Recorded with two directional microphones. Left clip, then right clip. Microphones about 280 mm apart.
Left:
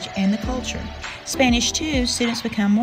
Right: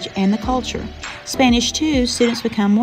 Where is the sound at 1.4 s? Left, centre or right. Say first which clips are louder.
Right 3 dB; centre.